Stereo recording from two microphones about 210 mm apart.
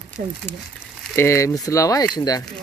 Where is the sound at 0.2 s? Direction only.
45° right (ahead or behind).